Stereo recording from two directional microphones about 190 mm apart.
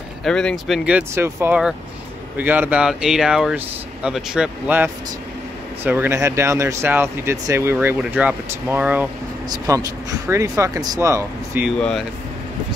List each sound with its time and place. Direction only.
0.2 s speech: 5° left (ahead or behind)
0.8 s speech: 10° right (ahead or behind)